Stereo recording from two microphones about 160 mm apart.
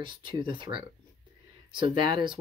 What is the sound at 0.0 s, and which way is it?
Speech, 30° right (ahead or behind).